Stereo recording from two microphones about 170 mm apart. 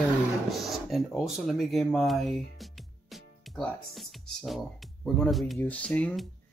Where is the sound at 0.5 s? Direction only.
Centre (ahead or behind).